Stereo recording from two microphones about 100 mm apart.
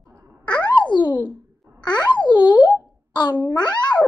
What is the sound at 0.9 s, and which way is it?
A child's voice, 50° left (ahead or behind).